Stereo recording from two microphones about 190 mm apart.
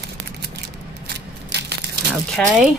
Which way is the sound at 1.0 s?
60° right (ahead or behind).